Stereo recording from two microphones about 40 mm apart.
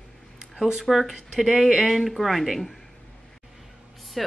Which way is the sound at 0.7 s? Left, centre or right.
Centre.